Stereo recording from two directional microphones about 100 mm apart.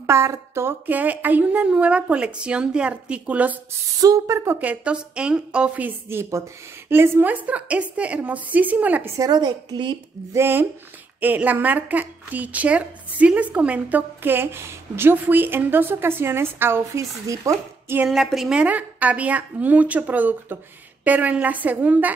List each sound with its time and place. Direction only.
0.0 s speech: 25° right (ahead or behind)
4.0 s speech: 30° right (ahead or behind)
4.6 s speech: 15° right (ahead or behind)
9.1 s speech: 35° right (ahead or behind)
9.4 s a woman's voice: 50° right (ahead or behind)
10.3 s a woman's voice: 25° right (ahead or behind)
18.0 s speech: 5° right (ahead or behind)